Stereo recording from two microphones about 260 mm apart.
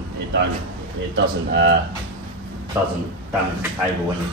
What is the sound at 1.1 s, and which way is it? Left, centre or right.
Speech, right.